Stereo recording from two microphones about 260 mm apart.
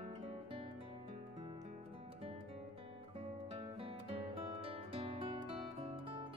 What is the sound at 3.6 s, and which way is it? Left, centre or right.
Music, right.